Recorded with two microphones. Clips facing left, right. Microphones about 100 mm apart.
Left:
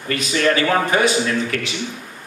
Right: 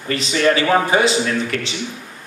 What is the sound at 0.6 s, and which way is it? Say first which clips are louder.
Speech: right 2 dB; 10° right (ahead or behind).